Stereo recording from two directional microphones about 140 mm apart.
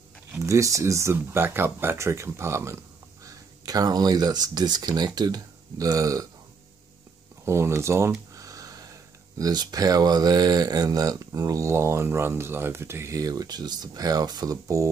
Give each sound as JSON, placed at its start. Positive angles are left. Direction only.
{"t": 0.3, "sound": "speech", "side_deg": -20}
{"t": 7.4, "sound": "speech", "side_deg": -20}
{"t": 8.4, "sound": "a sound", "side_deg": -25}
{"t": 9.4, "sound": "speech", "side_deg": -30}